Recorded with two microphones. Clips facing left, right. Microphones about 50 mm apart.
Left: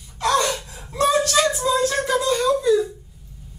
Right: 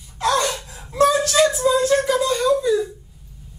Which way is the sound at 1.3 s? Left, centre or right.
Centre.